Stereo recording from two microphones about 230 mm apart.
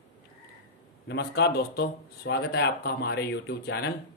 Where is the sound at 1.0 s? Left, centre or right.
Left.